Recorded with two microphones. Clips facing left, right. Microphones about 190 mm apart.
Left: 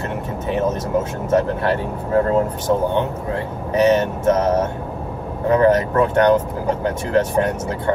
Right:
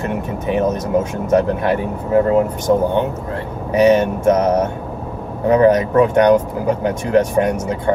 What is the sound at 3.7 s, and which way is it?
Speech, 15° right (ahead or behind).